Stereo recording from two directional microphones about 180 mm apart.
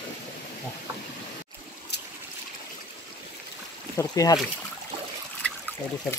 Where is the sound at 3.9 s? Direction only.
20° left (ahead or behind).